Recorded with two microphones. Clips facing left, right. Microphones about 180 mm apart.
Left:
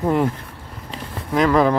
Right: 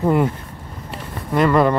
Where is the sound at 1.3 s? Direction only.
Centre (ahead or behind).